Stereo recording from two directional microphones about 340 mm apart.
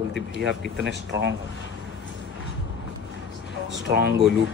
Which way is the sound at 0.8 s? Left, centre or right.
Right.